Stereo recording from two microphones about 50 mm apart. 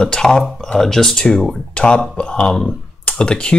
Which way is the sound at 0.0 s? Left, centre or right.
Centre.